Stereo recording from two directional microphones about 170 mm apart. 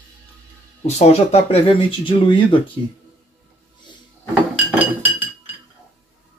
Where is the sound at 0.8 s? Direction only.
40° left (ahead or behind).